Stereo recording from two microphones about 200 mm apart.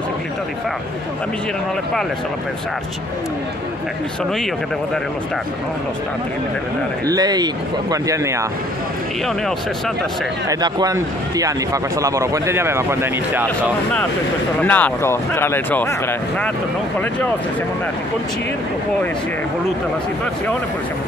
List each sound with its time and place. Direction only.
7.1 s speech: 20° right (ahead or behind)
10.5 s speech: 20° right (ahead or behind)
14.6 s speech: 10° left (ahead or behind)